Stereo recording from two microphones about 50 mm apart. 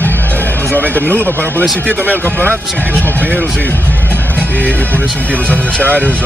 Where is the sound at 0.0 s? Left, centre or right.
Left.